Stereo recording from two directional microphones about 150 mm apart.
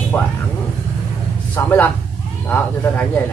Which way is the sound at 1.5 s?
10° left (ahead or behind).